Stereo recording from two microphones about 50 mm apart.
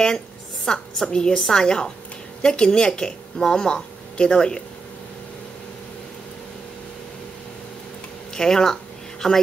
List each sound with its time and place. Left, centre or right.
0.7 s a woman's voice: centre
8.3 s speech: centre